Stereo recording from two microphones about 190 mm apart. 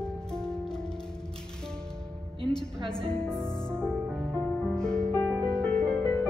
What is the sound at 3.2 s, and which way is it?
Music, centre (ahead or behind).